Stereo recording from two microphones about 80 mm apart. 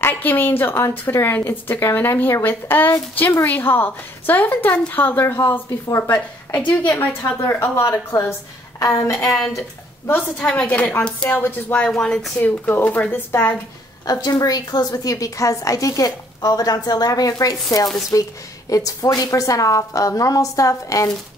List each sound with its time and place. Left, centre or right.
0.0 s a woman's voice: left
8.1 s a woman's voice: left
9.3 s a woman's voice: centre
10.0 s a woman's voice: left
11.2 s a woman's voice: left
11.9 s a woman's voice: centre
12.4 s a woman's voice: left
14.0 s a woman's voice: left